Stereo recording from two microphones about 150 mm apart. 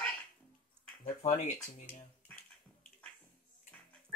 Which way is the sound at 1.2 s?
45° left (ahead or behind).